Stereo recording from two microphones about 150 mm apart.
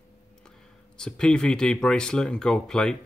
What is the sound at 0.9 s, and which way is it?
Speech, 5° left (ahead or behind).